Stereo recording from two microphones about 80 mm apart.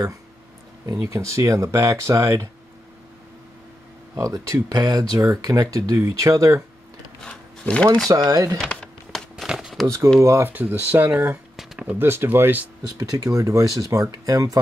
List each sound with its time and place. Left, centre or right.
1.0 s speech: right
4.2 s speech: right
7.2 s speech: centre
8.1 s speech: right
9.5 s a sound: centre
9.8 s speech: right
10.5 s speech: right
12.9 s speech: right